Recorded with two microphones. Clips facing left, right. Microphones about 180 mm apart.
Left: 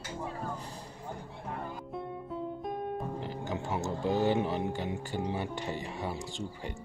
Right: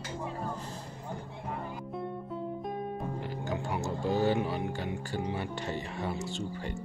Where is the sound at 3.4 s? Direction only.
20° left (ahead or behind).